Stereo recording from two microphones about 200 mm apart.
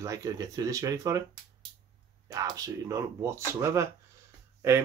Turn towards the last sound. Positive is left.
turn(degrees=-15)  # may be behind; listen again after turning